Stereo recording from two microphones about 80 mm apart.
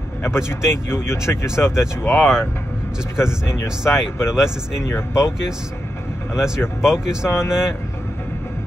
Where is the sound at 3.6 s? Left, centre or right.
Centre.